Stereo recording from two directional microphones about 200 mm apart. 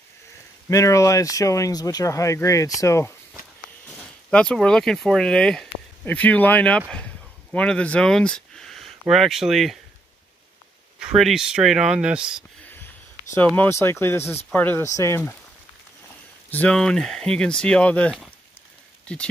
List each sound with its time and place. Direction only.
0.7 s speech: 15° left (ahead or behind)
4.3 s speech: 5° left (ahead or behind)
11.0 s speech: 5° right (ahead or behind)
13.3 s speech: 10° left (ahead or behind)
16.4 s speech: 5° left (ahead or behind)